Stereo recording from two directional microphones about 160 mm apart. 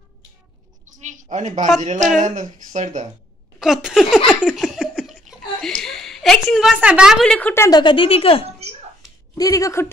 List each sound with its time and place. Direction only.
0.9 s a woman's voice: 50° right (ahead or behind)
3.5 s speech: 5° right (ahead or behind); by 7.8 s 15° left (ahead or behind)
7.8 s speech: 30° left (ahead or behind)
9.3 s speech: 20° left (ahead or behind)